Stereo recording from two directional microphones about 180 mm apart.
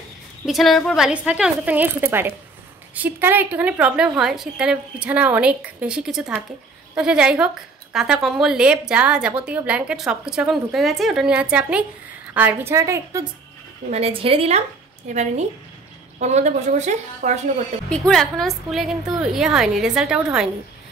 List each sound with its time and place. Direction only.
0.5 s a woman's voice: centre (ahead or behind); by 13.3 s 15° right (ahead or behind)
13.8 s a woman's voice: 35° right (ahead or behind)
17.8 s a woman's voice: 5° left (ahead or behind)